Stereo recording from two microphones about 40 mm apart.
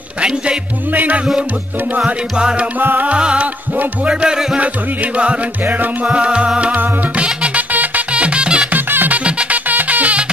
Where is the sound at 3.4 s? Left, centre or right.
Right.